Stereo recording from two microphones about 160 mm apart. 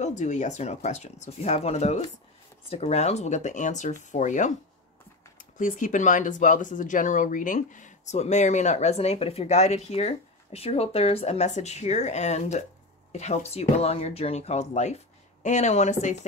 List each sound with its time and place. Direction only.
0.0 s speech: 50° left (ahead or behind)
5.6 s speech: 55° left (ahead or behind)